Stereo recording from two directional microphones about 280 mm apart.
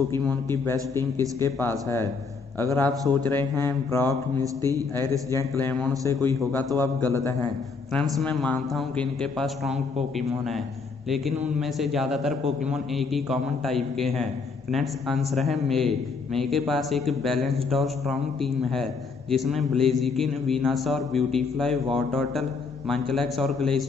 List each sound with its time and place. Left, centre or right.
0.1 s a man's voice: centre
4.1 s speech: centre
4.9 s a man's voice: centre
11.1 s a man's voice: centre